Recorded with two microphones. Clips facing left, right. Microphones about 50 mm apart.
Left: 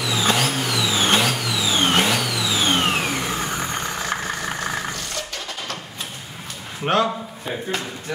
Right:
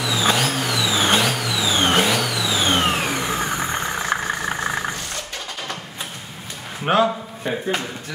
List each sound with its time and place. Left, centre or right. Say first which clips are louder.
0.0 s vehicle: right 1 dB; centre
6.9 s a man's voice: right 2 dB; centre